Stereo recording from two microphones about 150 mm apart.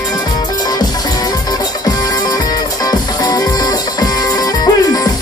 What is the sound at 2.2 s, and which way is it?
Music, 25° left (ahead or behind).